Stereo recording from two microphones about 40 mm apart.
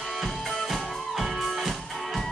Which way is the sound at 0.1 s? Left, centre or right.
Centre.